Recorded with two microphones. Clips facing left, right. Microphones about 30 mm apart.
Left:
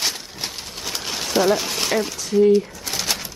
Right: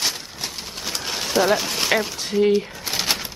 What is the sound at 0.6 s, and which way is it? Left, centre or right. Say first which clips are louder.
Pigeon: even; centre.